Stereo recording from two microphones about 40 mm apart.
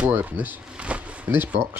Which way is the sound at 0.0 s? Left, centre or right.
Right.